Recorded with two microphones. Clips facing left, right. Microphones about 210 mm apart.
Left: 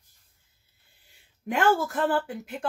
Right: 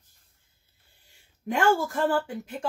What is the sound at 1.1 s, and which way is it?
Speech, centre (ahead or behind).